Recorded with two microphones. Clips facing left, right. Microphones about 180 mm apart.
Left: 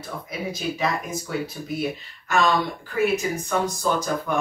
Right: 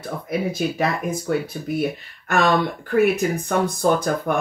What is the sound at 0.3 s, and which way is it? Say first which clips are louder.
Speech: right 6 dB; 55° right (ahead or behind).